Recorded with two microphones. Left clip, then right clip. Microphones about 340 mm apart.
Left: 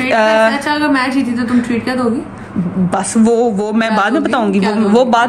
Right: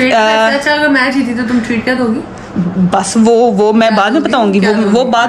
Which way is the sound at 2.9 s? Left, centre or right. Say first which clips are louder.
Right 4 dB; centre.